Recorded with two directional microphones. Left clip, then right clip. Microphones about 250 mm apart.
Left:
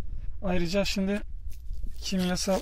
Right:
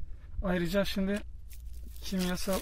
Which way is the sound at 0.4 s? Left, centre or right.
Centre.